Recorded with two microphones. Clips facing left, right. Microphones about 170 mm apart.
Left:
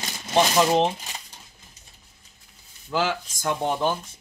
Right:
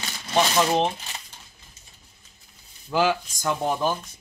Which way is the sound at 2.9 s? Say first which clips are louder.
Right 3 dB; 15° right (ahead or behind).